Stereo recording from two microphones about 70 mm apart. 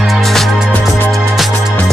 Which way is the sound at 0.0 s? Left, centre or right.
Centre.